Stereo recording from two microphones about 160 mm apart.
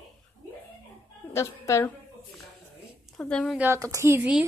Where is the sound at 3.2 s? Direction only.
5° left (ahead or behind).